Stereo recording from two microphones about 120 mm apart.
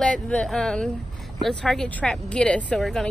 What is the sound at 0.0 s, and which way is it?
Speech, 10° left (ahead or behind).